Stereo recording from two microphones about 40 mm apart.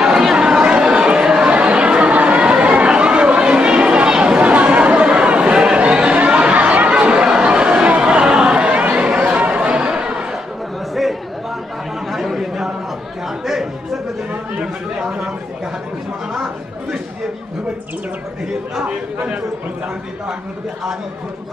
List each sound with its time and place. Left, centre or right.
0.0 s chatter: centre
0.4 s chatter: right
0.8 s a sound: right
1.5 s chatter: right
12.1 s chatter: centre